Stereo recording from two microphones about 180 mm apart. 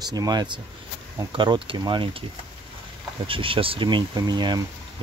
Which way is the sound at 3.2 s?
30° right (ahead or behind).